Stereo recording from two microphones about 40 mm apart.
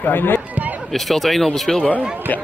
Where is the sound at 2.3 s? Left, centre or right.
Left.